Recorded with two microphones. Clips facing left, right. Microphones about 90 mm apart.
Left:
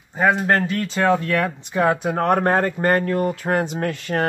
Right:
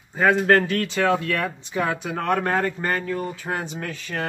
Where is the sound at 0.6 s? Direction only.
40° left (ahead or behind).